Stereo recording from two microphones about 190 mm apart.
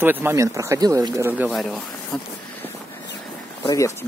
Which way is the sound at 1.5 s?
Centre (ahead or behind).